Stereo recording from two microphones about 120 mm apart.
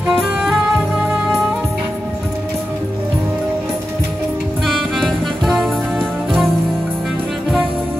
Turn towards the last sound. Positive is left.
turn(degrees=0)  # may be behind; listen again after turning